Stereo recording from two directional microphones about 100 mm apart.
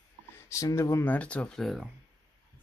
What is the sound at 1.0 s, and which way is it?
Speech, 15° left (ahead or behind).